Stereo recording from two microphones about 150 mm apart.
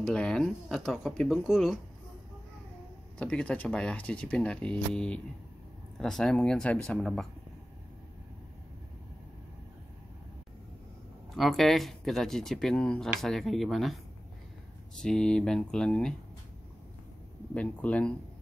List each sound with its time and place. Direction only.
0.0 s speech: 5° left (ahead or behind)
3.2 s speech: 10° left (ahead or behind)
11.3 s speech: centre (ahead or behind)
15.0 s speech: 5° left (ahead or behind)
17.6 s speech: 10° left (ahead or behind)